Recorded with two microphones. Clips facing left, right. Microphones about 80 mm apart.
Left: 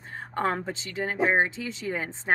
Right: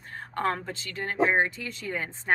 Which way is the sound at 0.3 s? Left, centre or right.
Centre.